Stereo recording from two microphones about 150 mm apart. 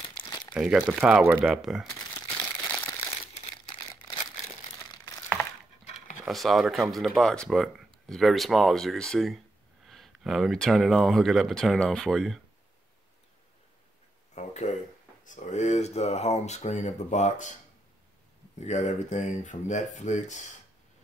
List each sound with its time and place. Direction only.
0.0 s crumpling: 30° left (ahead or behind)
0.6 s speech: 5° right (ahead or behind)
2.7 s crumpling: 15° left (ahead or behind)
3.9 s crumpling: 30° left (ahead or behind)
5.9 s a sound: 55° left (ahead or behind)
6.2 s speech: centre (ahead or behind)
14.3 s a sound: 50° left (ahead or behind)
15.2 s speech: 50° left (ahead or behind)
18.6 s speech: 50° left (ahead or behind)